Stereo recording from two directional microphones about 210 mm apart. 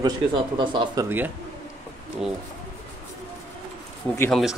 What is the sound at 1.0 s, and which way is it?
Speech, 10° right (ahead or behind).